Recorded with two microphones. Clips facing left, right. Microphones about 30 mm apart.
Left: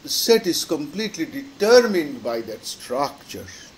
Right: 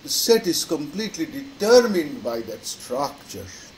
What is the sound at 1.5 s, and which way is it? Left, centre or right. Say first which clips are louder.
Speech: left 1 dB; left.